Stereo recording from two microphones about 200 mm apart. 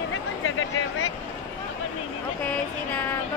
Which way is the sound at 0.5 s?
85° left.